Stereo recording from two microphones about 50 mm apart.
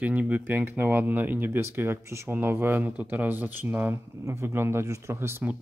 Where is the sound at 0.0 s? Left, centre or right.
Right.